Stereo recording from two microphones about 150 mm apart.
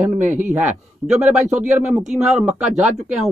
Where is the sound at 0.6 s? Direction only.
10° right (ahead or behind).